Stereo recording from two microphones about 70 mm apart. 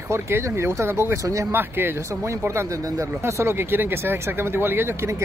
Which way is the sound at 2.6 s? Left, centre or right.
Right.